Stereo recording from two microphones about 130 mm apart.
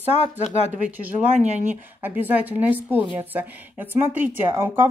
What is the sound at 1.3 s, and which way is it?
Speech, 60° right (ahead or behind).